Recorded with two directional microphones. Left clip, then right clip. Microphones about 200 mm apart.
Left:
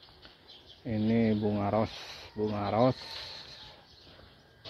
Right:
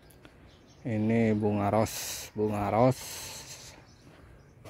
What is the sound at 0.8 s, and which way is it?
Speech, 40° right (ahead or behind).